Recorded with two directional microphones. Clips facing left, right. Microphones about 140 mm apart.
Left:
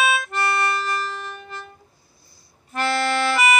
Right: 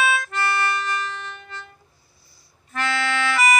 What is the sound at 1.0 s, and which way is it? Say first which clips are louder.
Music: left 1 dB; 10° left (ahead or behind).